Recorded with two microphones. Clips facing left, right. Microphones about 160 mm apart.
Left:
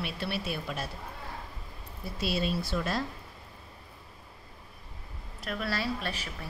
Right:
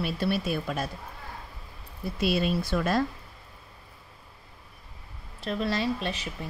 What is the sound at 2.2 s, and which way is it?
Speech, 55° right (ahead or behind).